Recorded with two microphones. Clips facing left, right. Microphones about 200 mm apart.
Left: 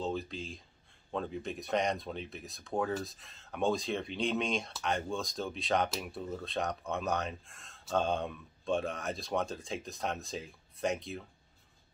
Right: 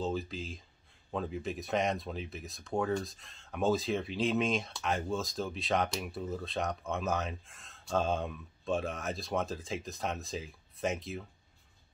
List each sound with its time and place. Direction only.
0.0 s speech: centre (ahead or behind)